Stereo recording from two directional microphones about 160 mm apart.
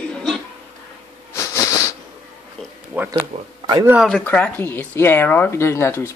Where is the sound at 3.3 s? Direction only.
40° right (ahead or behind).